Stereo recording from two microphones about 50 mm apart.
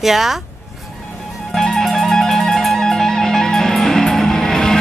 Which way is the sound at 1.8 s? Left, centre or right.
Centre.